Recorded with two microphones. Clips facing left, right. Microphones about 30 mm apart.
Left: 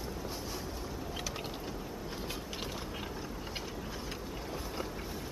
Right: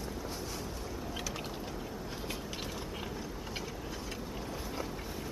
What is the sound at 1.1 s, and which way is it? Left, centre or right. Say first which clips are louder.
Mechanisms: right 1 dB; centre.